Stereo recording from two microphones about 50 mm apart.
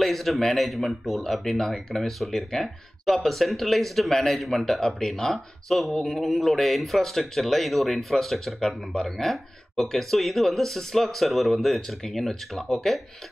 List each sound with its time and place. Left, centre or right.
0.0 s speech: centre